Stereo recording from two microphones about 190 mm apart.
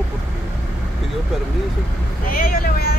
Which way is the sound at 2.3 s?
50° left (ahead or behind).